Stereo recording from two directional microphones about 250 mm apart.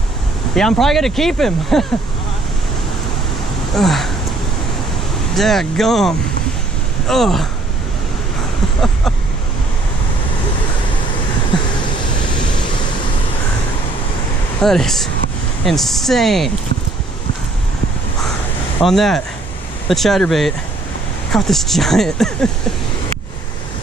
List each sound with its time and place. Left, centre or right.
0.6 s speech: centre
3.7 s speech: centre
5.3 s speech: centre
14.6 s speech: centre
18.8 s speech: centre